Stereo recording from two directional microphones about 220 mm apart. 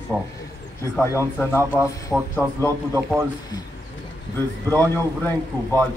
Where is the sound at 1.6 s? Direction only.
10° right (ahead or behind).